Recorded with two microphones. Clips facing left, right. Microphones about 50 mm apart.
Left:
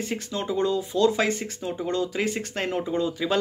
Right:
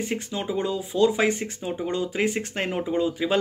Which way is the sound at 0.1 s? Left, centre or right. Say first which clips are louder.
Even; centre.